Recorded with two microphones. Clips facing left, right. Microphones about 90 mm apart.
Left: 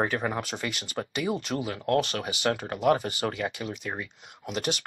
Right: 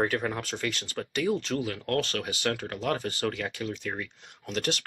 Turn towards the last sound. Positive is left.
turn(degrees=5)  # may be behind; listen again after turning